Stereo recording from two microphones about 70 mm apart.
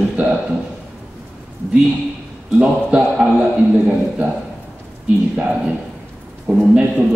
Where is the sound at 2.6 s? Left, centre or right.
Centre.